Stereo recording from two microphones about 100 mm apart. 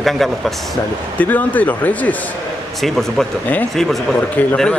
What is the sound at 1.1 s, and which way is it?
Speech, 15° left (ahead or behind).